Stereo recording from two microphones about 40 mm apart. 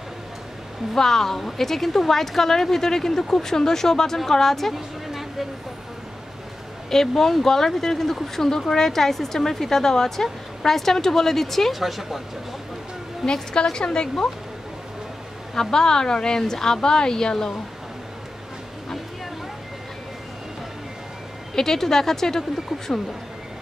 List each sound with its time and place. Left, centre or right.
0.9 s speech: centre
4.7 s a sound: centre
6.9 s speech: centre
11.7 s speech: centre
13.2 s a woman's voice: centre
15.5 s speech: centre
21.5 s speech: centre